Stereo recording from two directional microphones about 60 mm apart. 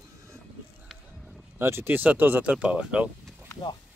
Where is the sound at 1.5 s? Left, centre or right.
Right.